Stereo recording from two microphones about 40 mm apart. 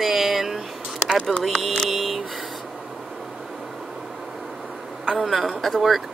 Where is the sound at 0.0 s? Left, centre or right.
Centre.